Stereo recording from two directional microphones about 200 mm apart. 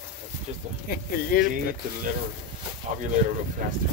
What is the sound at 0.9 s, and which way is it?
Speech, 50° left (ahead or behind).